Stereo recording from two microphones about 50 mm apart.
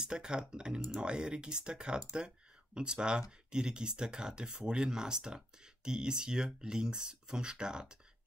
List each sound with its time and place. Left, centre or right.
0.0 s speech: centre